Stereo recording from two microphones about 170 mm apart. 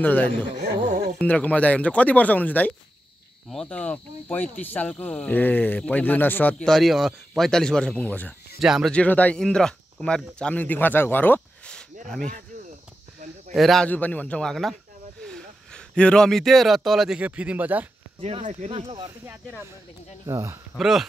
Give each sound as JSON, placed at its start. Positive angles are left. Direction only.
{"t": 0.0, "sound": "speech", "side_deg": 10}
{"t": 8.5, "sound": "speech", "side_deg": -5}
{"t": 13.6, "sound": "speech", "side_deg": 0}
{"t": 18.2, "sound": "speech", "side_deg": -40}
{"t": 20.2, "sound": "speech", "side_deg": -15}
{"t": 20.7, "sound": "speech", "side_deg": 0}